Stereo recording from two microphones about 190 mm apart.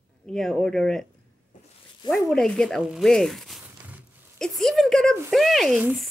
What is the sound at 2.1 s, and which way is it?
Speech, centre (ahead or behind).